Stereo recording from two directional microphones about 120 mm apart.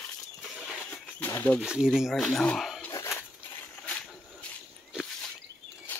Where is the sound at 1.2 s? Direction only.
15° left (ahead or behind).